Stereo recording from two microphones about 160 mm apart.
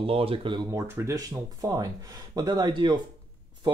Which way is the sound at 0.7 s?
20° right (ahead or behind).